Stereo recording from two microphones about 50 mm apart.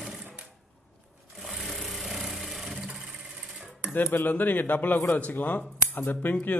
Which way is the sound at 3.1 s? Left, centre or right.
Centre.